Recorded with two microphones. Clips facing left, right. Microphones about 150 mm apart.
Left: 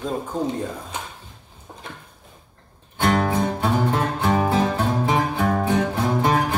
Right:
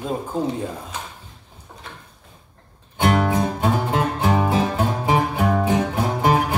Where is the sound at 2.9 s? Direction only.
15° right (ahead or behind).